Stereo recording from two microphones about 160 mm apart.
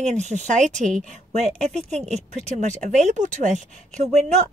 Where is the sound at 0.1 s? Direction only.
50° right (ahead or behind).